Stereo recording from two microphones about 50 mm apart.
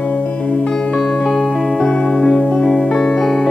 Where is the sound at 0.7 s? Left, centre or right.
Centre.